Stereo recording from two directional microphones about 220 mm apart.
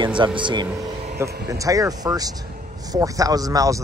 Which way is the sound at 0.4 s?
20° right (ahead or behind).